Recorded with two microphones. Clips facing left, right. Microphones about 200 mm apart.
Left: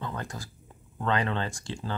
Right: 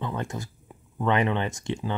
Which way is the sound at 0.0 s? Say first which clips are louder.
Right 5 dB; 25° right (ahead or behind).